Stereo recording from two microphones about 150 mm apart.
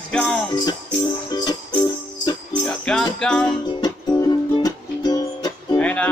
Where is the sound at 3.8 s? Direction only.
25° left (ahead or behind).